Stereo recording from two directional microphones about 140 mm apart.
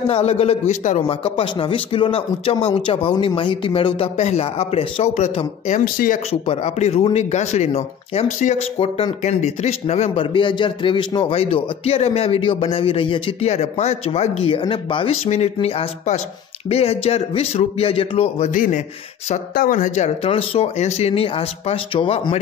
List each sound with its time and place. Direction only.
0.1 s a man's voice: 50° left (ahead or behind)
5.7 s speech: 70° left (ahead or behind)
6.4 s a man's voice: 50° left (ahead or behind)
10.3 s a man's voice: 35° left (ahead or behind)
15.2 s a man's voice: 50° left (ahead or behind)
18.5 s speech: 70° left (ahead or behind)
19.5 s speech: 85° left
20.2 s a man's voice: 45° left (ahead or behind)